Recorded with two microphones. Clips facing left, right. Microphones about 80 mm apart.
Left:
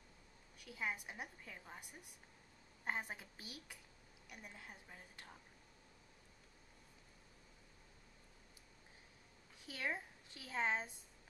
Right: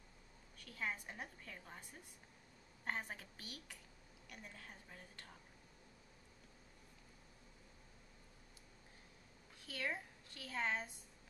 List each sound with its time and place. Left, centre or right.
0.6 s a woman's voice: centre
9.6 s a woman's voice: centre